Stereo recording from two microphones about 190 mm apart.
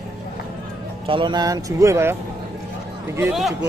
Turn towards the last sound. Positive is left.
turn(degrees=0)  # may be behind; listen again after turning